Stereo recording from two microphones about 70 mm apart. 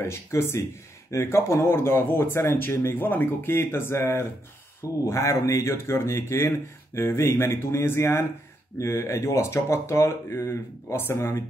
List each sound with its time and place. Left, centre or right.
0.1 s speech: left